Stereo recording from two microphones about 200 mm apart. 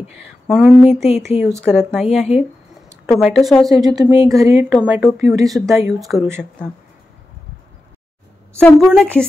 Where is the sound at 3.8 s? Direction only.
20° right (ahead or behind).